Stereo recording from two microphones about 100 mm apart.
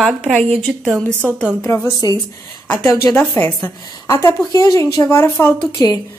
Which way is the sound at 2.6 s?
15° left (ahead or behind).